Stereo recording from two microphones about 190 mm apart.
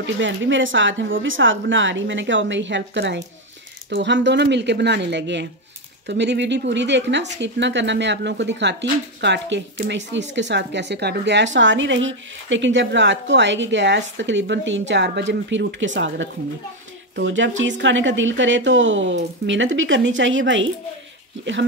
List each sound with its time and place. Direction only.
0.0 s speech: 75° right (ahead or behind)